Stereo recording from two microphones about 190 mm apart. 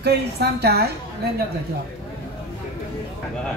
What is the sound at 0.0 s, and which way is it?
Speech, 60° right (ahead or behind).